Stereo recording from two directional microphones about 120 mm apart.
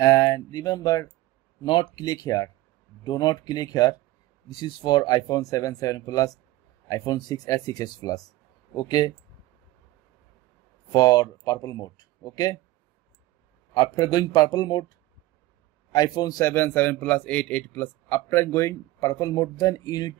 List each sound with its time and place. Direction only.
0.0 s speech: 30° left (ahead or behind)
10.9 s speech: 35° left (ahead or behind)
13.7 s speech: 35° left (ahead or behind)
15.9 s a man's voice: 35° left (ahead or behind)